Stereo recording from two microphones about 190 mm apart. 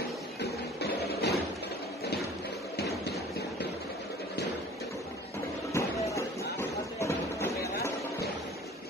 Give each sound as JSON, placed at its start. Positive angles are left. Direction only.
{"t": 0.4, "sound": "music", "side_deg": 60}
{"t": 5.7, "sound": "music", "side_deg": 15}
{"t": 6.6, "sound": "a sound", "side_deg": 15}